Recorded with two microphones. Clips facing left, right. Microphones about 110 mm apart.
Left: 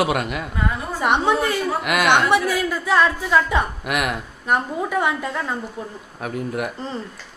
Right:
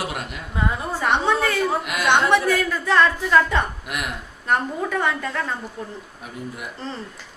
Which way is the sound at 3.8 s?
75° left (ahead or behind).